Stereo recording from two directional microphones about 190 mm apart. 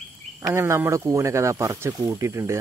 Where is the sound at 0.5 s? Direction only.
15° right (ahead or behind).